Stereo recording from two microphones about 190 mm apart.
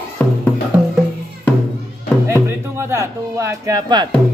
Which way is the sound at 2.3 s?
15° right (ahead or behind).